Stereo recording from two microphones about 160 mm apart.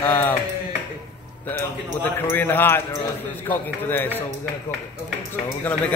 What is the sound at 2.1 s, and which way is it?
A man's voice, 15° left (ahead or behind).